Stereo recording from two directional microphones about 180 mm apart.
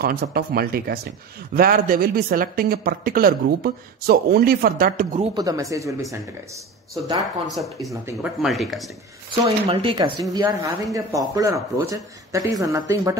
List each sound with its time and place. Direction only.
0.0 s speech: 55° right (ahead or behind)
5.3 s speech: 20° right (ahead or behind)
7.5 s speech: centre (ahead or behind)
9.4 s speech: 30° right (ahead or behind)